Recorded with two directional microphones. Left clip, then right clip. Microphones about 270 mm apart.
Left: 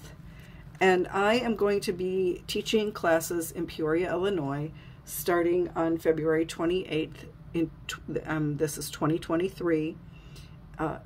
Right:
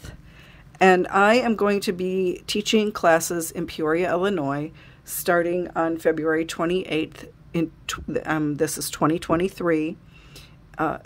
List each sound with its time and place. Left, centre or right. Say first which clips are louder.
0.7 s speech: right 7 dB; right